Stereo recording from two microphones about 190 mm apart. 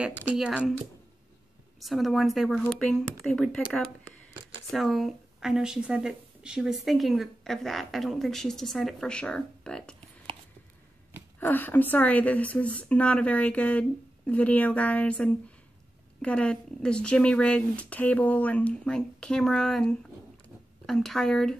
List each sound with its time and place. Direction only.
0.3 s speech: 5° right (ahead or behind)
1.8 s speech: centre (ahead or behind)
11.3 s speech: 10° left (ahead or behind)
20.4 s a sound: centre (ahead or behind)